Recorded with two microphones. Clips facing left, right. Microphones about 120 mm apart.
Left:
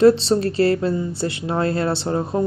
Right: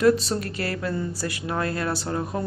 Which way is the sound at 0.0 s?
30° left (ahead or behind).